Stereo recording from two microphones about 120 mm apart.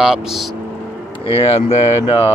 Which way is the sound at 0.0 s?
5° right (ahead or behind).